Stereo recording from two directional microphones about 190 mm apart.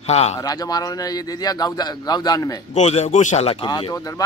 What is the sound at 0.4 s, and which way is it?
A man's voice, 20° left (ahead or behind).